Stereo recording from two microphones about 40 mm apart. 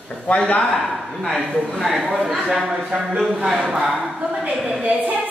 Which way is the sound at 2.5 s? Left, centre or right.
Centre.